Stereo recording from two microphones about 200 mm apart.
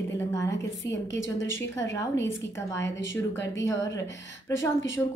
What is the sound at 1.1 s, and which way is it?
Speech, 70° left (ahead or behind).